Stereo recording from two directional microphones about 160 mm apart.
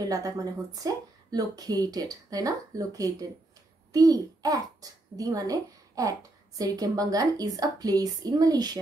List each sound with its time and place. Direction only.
0.0 s a child's voice: 20° right (ahead or behind)